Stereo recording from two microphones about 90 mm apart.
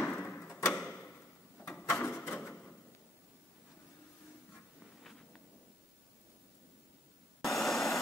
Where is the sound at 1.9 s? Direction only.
25° left (ahead or behind).